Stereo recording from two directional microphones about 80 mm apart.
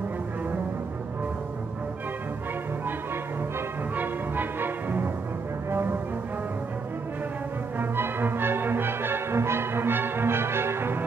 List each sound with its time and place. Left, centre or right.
3.9 s music: right
7.8 s music: right